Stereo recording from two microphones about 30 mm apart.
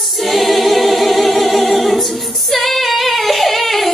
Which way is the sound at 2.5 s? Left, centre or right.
Centre.